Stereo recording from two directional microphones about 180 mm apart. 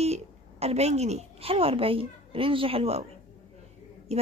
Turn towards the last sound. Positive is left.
turn(degrees=-35)  # may be behind; listen again after turning